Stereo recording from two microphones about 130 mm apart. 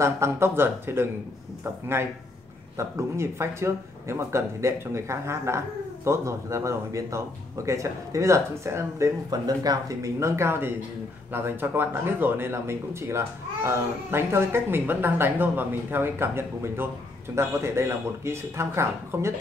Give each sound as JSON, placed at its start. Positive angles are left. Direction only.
{"t": 0.0, "sound": "speech", "side_deg": -20}